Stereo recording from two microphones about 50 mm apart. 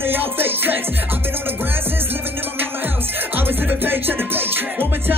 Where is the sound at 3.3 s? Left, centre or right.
Right.